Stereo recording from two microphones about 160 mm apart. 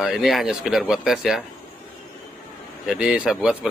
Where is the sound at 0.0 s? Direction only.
Centre (ahead or behind).